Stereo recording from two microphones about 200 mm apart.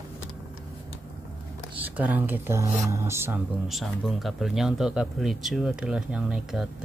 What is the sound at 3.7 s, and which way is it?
Speech, centre (ahead or behind).